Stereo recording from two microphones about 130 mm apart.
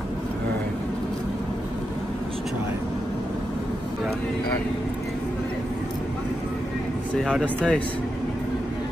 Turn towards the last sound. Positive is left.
turn(degrees=5)  # may be behind; listen again after turning